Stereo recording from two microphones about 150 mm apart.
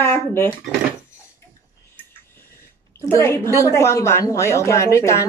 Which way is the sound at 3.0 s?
20° left (ahead or behind).